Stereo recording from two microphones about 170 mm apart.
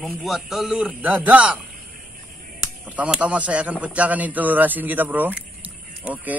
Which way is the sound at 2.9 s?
10° right (ahead or behind).